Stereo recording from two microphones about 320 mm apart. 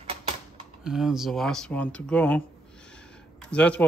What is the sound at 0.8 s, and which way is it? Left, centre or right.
Speech, centre.